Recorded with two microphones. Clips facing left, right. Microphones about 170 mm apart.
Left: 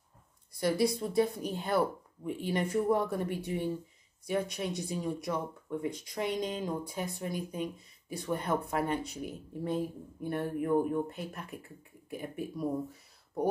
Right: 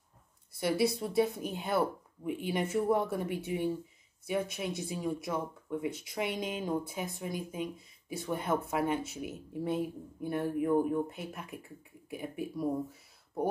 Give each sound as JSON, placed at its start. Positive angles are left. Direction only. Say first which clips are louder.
{"t": 0.6, "sound": "speech", "louder": "left 1 dB", "side_deg": -5}